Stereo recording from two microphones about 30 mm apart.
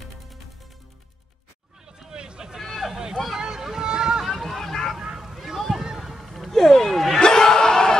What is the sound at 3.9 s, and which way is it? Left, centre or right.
Boat, right.